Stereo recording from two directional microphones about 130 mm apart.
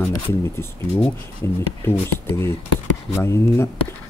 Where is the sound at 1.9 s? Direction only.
20° left (ahead or behind).